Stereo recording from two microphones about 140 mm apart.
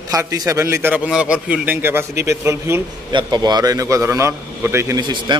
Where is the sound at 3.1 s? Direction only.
30° right (ahead or behind).